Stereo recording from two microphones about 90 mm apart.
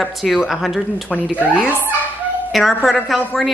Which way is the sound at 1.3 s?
25° left (ahead or behind).